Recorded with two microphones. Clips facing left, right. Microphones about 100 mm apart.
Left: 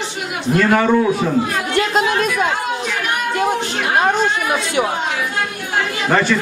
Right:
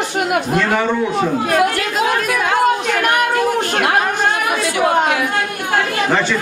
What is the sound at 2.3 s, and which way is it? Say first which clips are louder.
Chatter: right 4 dB; 60° right (ahead or behind).